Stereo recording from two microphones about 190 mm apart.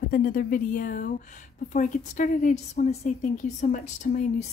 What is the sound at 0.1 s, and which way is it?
A woman's voice, 50° left (ahead or behind).